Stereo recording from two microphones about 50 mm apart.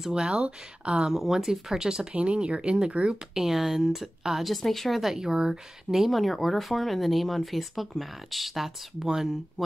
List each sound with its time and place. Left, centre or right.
0.1 s speech: centre
1.1 s a woman's voice: centre; by 3.2 s right
3.3 s a woman's voice: centre
4.5 s speech: centre
5.1 s speech: centre